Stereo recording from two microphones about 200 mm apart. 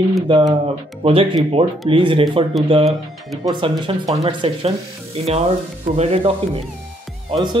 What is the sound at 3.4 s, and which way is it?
Speech, 20° right (ahead or behind).